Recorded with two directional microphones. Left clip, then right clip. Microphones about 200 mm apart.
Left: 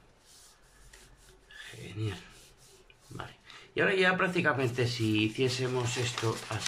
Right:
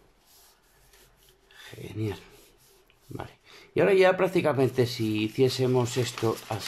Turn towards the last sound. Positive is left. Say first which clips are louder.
# right 4 dB
turn(degrees=-25)  # may be behind; listen again after turning